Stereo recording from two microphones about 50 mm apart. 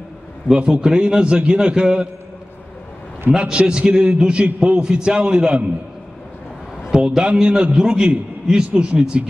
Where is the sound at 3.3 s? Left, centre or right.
Right.